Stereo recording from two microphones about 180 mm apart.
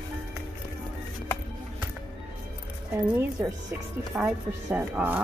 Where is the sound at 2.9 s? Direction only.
15° right (ahead or behind).